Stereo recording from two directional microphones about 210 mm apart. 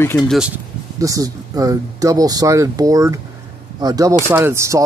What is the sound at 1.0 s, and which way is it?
Speech, 15° right (ahead or behind).